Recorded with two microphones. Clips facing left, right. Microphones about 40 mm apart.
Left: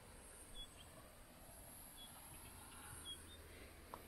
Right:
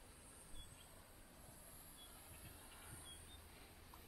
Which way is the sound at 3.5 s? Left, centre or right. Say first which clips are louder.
Left 3 dB; left.